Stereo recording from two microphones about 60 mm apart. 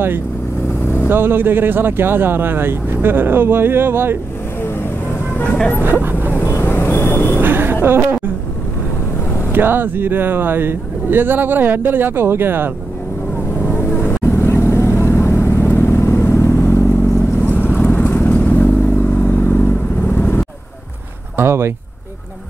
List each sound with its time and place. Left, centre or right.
1.0 s speech: right
5.3 s speech: left
5.9 s speech: right
6.3 s vehicle: left
7.3 s a sound: right
9.5 s speech: right
13.7 s vehicle: left
17.4 s vehicle: left
21.4 s speech: right